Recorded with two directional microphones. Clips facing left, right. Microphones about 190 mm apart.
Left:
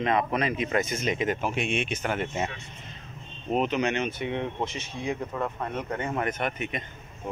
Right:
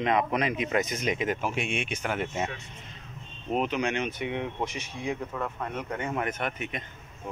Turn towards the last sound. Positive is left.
turn(degrees=0)  # may be behind; listen again after turning